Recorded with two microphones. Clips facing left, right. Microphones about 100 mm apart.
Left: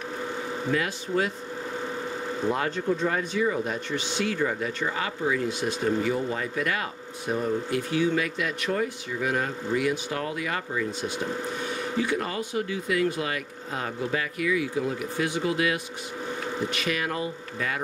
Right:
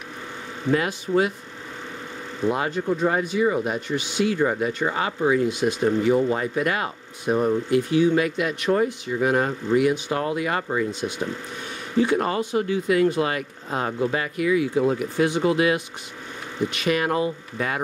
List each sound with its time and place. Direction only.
0.8 s speech: 15° right (ahead or behind)
2.4 s speech: 10° right (ahead or behind)
4.8 s speech: 30° right (ahead or behind)
5.5 s speech: 15° right (ahead or behind)
12.0 s speech: 35° right (ahead or behind)